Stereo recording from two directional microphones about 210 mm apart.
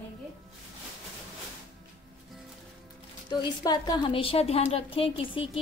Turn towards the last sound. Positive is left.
turn(degrees=25)  # may be behind; listen again after turning